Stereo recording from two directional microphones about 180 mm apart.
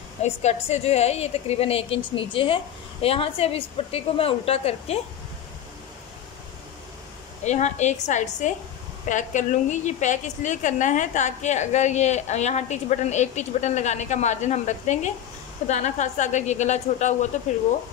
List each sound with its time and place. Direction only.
0.2 s a woman's voice: 35° left (ahead or behind)
7.4 s a woman's voice: 40° left (ahead or behind)